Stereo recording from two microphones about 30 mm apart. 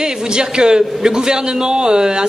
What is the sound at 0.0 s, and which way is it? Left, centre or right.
A man's voice, right.